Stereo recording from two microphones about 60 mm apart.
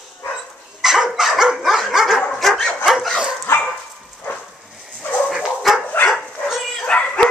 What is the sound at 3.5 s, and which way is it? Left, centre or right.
Dog, left.